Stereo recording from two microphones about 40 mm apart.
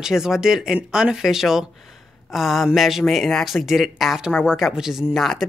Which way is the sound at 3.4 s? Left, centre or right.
Centre.